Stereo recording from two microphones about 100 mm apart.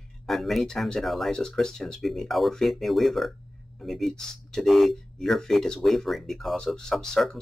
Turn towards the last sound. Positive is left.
turn(degrees=5)  # may be behind; listen again after turning